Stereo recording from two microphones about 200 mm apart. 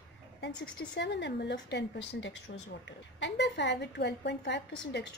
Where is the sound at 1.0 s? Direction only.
60° left (ahead or behind).